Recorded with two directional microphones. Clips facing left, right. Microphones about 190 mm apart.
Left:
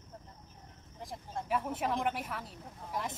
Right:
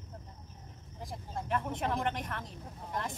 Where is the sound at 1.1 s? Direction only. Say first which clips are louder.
Even; 5° left (ahead or behind).